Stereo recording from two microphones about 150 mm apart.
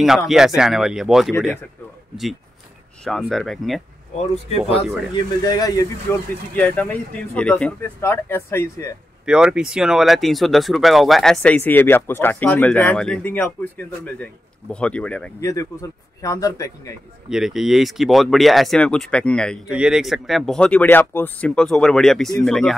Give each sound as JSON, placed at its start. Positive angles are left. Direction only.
{"t": 0.0, "sound": "speech", "side_deg": 0}
{"t": 3.0, "sound": "speech", "side_deg": 0}
{"t": 5.1, "sound": "a man's voice", "side_deg": 25}
{"t": 6.5, "sound": "speech", "side_deg": 10}
{"t": 9.2, "sound": "speech", "side_deg": -5}
{"t": 15.4, "sound": "a man's voice", "side_deg": 20}
{"t": 17.3, "sound": "speech", "side_deg": -5}
{"t": 19.7, "sound": "speech", "side_deg": -5}